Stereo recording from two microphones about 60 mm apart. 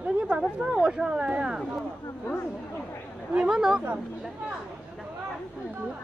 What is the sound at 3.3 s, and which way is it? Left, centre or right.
Speech, centre.